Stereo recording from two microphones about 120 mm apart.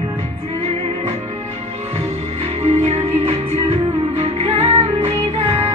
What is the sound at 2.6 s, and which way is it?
Music, 65° right (ahead or behind).